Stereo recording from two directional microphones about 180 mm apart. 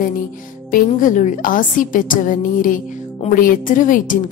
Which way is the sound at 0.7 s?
50° left (ahead or behind).